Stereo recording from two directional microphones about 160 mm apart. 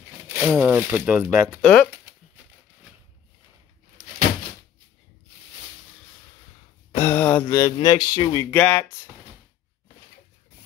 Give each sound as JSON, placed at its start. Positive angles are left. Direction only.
{"t": 0.3, "sound": "speech", "side_deg": -10}
{"t": 1.6, "sound": "speech", "side_deg": 5}
{"t": 7.0, "sound": "a sound", "side_deg": 15}
{"t": 7.6, "sound": "speech", "side_deg": 25}
{"t": 8.5, "sound": "speech", "side_deg": 10}